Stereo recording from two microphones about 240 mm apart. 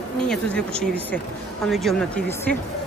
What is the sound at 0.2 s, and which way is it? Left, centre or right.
Speech, centre.